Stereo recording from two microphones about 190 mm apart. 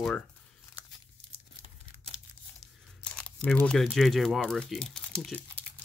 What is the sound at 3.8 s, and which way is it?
Speech, centre (ahead or behind).